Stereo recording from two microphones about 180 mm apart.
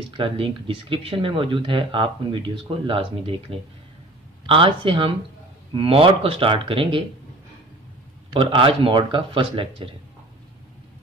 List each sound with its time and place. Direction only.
0.1 s speech: 25° right (ahead or behind)
8.3 s speech: 30° right (ahead or behind)